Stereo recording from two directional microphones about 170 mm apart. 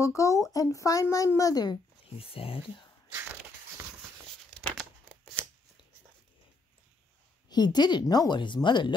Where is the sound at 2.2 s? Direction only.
35° left (ahead or behind).